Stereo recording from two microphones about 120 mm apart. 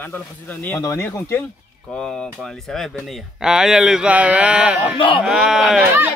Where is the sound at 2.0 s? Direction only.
5° left (ahead or behind).